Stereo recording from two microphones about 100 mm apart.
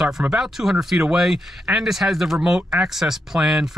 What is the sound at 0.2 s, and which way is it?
Speech, 5° right (ahead or behind).